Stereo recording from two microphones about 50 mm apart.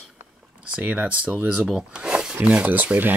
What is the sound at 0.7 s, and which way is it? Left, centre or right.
Speech, right.